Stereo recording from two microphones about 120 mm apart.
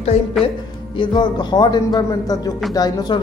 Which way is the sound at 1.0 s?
40° left (ahead or behind).